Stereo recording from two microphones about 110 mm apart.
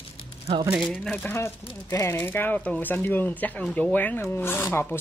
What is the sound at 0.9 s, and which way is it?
Speech, 10° left (ahead or behind).